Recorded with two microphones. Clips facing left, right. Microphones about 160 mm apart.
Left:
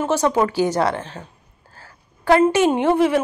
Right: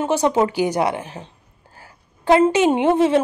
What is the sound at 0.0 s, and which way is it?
Speech, 15° right (ahead or behind).